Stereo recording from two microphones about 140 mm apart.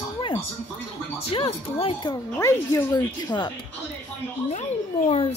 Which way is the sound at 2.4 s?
20° left (ahead or behind).